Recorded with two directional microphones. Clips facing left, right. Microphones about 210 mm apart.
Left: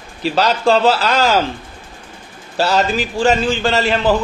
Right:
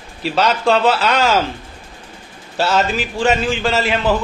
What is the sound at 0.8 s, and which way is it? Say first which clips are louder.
Speech: left 1 dB; 35° left (ahead or behind).